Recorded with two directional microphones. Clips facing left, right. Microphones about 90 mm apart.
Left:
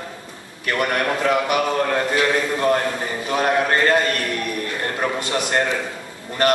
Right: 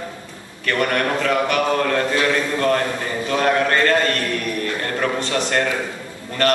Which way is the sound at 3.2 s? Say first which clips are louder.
Right 1 dB; 20° left (ahead or behind).